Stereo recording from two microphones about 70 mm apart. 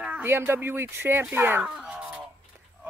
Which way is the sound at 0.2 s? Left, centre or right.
Right.